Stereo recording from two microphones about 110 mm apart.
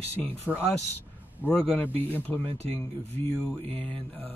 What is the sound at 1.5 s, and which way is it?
Speech, 15° left (ahead or behind).